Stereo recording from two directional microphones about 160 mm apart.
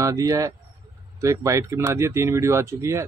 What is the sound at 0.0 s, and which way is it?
Speech, 20° right (ahead or behind).